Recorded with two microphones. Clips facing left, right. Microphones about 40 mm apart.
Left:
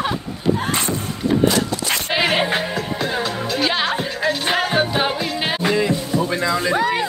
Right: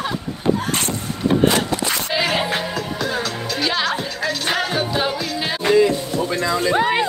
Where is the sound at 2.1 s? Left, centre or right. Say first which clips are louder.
Left 3 dB; left.